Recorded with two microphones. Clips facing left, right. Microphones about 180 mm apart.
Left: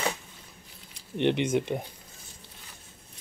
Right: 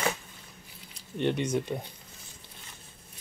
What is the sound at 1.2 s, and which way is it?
Speech, 20° left (ahead or behind).